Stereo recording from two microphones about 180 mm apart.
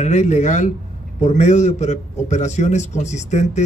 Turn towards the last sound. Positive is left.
turn(degrees=40)  # may be behind; listen again after turning